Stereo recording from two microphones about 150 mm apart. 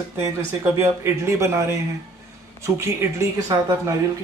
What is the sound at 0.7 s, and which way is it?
Speech, 15° right (ahead or behind).